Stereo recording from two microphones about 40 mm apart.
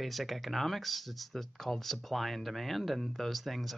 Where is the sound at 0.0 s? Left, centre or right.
Centre.